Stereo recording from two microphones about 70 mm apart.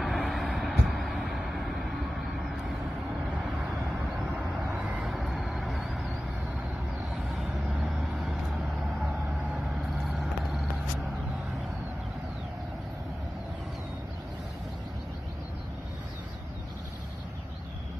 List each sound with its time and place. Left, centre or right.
0.0 s vehicle: centre
4.4 s vehicle: centre
5.0 s vehicle: centre
7.3 s vehicle: centre
10.0 s vehicle: centre